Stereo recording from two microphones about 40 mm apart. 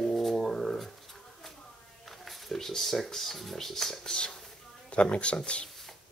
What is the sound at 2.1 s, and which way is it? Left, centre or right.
Speech, centre.